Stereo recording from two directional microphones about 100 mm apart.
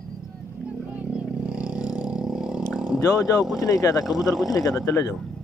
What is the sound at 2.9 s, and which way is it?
Speech, 35° left (ahead or behind).